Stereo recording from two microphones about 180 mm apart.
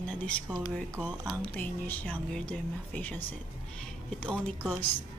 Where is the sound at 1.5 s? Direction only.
10° left (ahead or behind).